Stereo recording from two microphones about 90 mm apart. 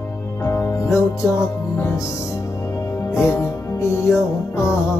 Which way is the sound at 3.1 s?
30° left (ahead or behind).